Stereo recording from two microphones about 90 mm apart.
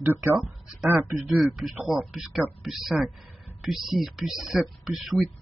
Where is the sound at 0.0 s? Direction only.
20° right (ahead or behind).